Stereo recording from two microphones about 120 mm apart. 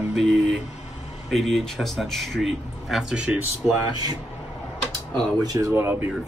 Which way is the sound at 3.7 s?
35° right (ahead or behind).